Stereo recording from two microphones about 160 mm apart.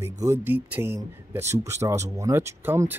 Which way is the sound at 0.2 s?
15° right (ahead or behind).